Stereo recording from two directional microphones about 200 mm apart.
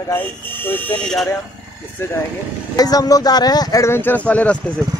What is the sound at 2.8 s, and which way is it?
Speech, 20° left (ahead or behind).